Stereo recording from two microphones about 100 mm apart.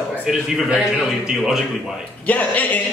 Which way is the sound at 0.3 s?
10° right (ahead or behind).